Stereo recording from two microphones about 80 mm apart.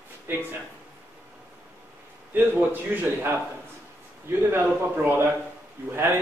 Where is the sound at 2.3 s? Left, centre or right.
Right.